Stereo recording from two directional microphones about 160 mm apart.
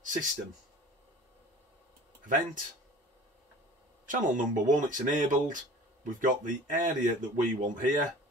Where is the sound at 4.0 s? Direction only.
55° right (ahead or behind).